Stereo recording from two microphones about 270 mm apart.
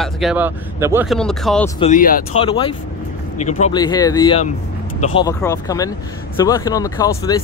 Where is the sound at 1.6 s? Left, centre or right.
Left.